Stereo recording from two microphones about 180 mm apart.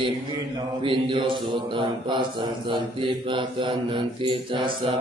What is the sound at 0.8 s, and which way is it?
Mantra, 30° right (ahead or behind).